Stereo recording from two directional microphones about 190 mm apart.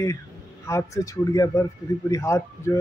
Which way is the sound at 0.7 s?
15° left (ahead or behind).